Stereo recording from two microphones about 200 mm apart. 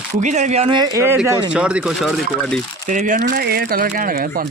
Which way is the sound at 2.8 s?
40° right (ahead or behind).